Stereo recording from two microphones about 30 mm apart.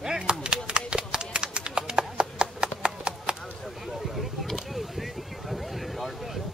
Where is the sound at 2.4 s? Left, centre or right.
Right.